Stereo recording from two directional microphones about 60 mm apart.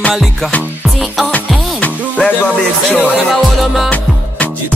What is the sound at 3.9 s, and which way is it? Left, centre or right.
Music, left.